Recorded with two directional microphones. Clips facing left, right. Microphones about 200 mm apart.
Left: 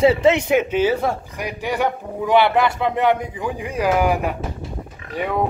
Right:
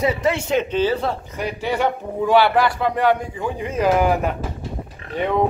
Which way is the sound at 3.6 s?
10° left (ahead or behind).